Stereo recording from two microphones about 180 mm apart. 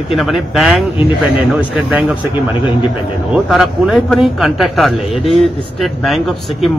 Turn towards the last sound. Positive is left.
turn(degrees=0)  # may be behind; listen again after turning